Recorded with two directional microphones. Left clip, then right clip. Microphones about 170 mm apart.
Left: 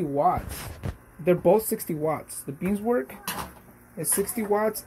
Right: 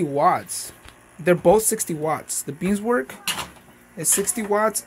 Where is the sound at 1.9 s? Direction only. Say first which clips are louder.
Right 3 dB; 20° right (ahead or behind).